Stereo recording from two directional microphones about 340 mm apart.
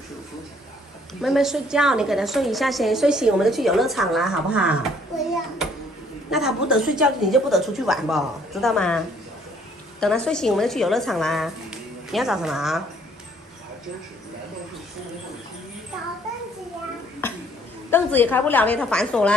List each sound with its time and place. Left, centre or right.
1.2 s a woman's voice: centre
6.3 s a woman's voice: centre
17.9 s a woman's voice: centre